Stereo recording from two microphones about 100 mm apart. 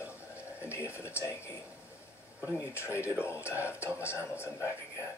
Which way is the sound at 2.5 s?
25° left (ahead or behind).